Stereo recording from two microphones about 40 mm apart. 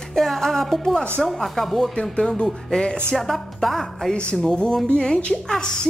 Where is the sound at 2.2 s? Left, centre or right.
Centre.